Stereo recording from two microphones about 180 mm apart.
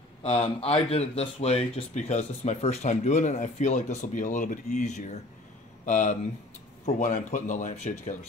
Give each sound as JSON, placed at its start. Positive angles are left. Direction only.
{"t": 0.2, "sound": "speech", "side_deg": 35}